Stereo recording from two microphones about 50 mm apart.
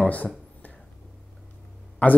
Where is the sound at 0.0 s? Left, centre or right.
Left.